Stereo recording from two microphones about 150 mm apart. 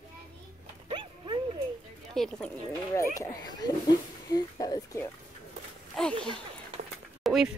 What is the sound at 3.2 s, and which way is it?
Speech, 25° left (ahead or behind).